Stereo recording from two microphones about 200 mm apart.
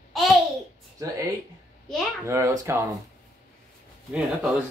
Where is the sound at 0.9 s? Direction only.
15° right (ahead or behind).